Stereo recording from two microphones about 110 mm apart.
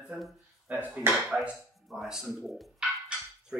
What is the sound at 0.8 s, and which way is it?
Speech, 15° right (ahead or behind).